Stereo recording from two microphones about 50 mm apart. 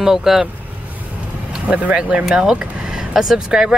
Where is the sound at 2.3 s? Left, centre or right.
Centre.